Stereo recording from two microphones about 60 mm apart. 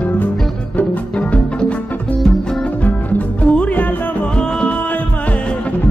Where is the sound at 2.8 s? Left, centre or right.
Left.